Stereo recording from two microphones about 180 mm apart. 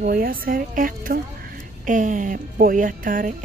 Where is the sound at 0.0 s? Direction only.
55° right (ahead or behind).